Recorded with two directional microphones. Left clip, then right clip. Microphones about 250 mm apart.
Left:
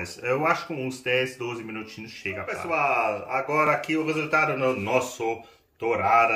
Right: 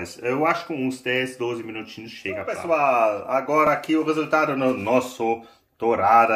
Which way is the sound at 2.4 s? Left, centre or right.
Right.